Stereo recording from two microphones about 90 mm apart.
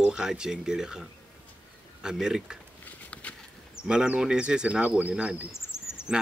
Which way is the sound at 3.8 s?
10° right (ahead or behind).